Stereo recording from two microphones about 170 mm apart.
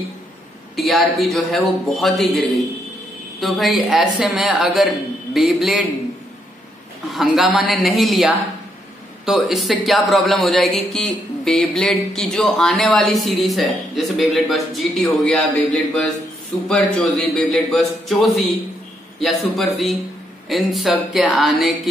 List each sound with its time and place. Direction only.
0.7 s speech: centre (ahead or behind)
7.1 s speech: centre (ahead or behind)